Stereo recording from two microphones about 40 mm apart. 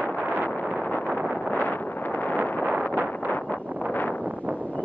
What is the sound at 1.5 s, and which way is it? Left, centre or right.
Wind noise, left.